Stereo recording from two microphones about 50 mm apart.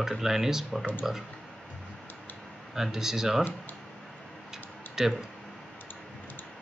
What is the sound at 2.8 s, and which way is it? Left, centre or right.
Speech, centre.